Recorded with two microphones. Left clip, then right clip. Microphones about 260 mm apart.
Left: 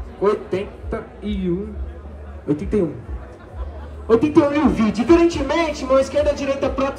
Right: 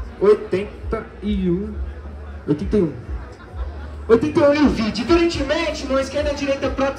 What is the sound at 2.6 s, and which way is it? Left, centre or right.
Speech, left.